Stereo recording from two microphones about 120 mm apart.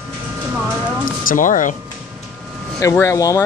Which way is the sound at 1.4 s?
90° left.